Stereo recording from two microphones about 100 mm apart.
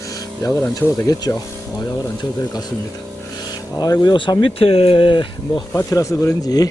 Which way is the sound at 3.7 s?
40° left (ahead or behind).